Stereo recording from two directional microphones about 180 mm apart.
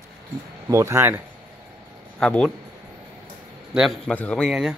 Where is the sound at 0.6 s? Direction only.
15° right (ahead or behind).